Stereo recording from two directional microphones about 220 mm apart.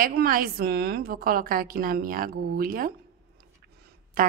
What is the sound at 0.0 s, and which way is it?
Speech, 40° right (ahead or behind).